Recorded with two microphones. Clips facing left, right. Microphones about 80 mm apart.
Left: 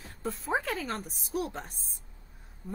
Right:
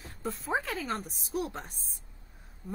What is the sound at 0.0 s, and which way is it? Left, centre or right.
A woman's voice, centre.